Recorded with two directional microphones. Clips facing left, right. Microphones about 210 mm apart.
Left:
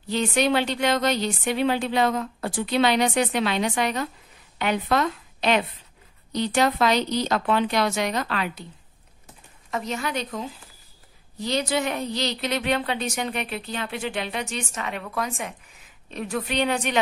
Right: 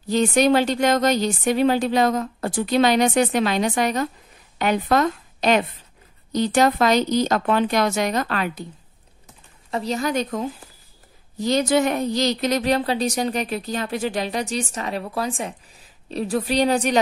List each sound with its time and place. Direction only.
0.0 s a woman's voice: 40° right (ahead or behind)
9.7 s speech: 35° right (ahead or behind)